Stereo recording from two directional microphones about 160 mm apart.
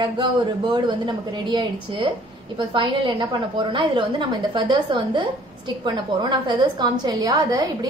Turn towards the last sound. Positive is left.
turn(degrees=-20)  # may be behind; listen again after turning